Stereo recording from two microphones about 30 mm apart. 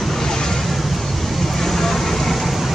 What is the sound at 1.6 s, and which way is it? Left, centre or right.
Vehicle, centre.